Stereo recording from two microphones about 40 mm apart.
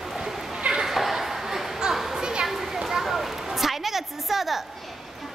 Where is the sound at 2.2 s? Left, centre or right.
Centre.